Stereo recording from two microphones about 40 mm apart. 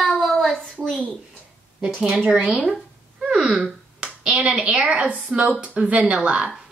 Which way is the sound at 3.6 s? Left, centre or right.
Right.